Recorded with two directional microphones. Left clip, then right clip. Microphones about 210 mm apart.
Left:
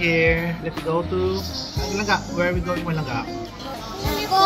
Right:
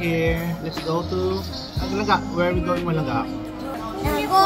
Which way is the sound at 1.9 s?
10° left (ahead or behind).